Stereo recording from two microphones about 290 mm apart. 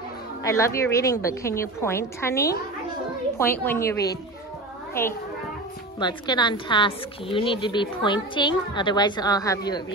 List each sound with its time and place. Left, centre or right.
0.4 s speech: centre